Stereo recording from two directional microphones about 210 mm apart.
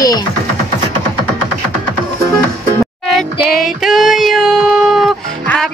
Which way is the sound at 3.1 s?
Centre (ahead or behind).